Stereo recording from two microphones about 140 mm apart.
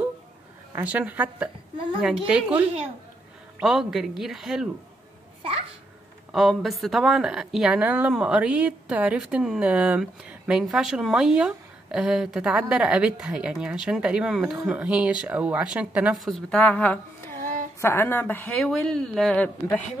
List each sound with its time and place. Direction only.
0.7 s a woman's voice: 10° right (ahead or behind)
6.3 s a woman's voice: centre (ahead or behind)